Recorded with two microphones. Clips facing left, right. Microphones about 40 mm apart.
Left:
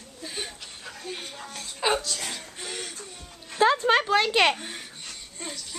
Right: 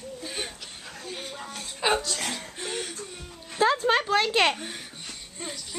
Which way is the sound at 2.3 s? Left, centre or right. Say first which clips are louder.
Right 3 dB; centre.